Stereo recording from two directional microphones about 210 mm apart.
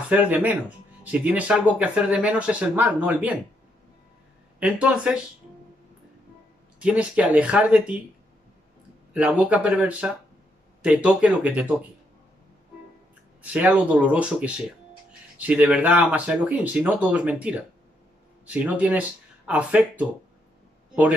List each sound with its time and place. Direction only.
0.1 s speech: 10° right (ahead or behind)
4.6 s speech: 5° right (ahead or behind)
6.8 s speech: 5° right (ahead or behind)
9.1 s speech: 5° right (ahead or behind)
13.4 s speech: 5° right (ahead or behind)